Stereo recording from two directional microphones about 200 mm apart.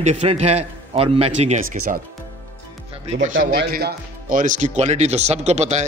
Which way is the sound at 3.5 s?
50° right (ahead or behind).